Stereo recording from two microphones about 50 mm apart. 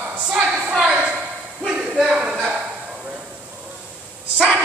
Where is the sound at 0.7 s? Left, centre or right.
Centre.